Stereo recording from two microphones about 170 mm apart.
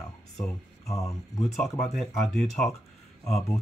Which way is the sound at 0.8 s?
20° left (ahead or behind).